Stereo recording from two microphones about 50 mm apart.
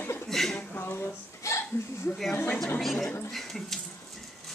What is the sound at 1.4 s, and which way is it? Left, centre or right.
Speech, left.